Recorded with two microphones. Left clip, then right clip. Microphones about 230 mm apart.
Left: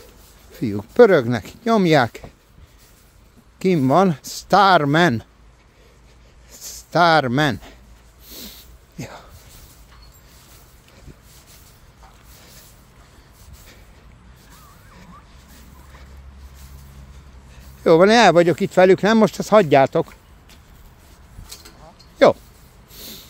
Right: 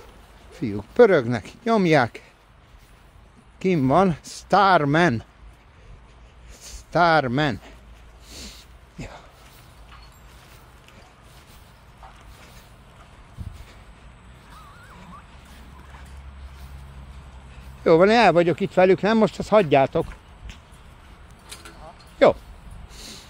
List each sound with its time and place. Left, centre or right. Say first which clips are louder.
0.5 s speech: left 4 dB; left
3.5 s speech: left 3 dB; left
6.5 s a man's voice: left 3 dB; centre
8.3 s a sound: left 2 dB; left
17.8 s speech: left 3 dB; left
22.2 s speech: left 3 dB; left
22.8 s a sound: left 2 dB; centre